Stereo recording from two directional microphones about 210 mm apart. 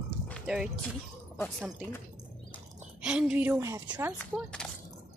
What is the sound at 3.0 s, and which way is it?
A woman's voice, 5° right (ahead or behind).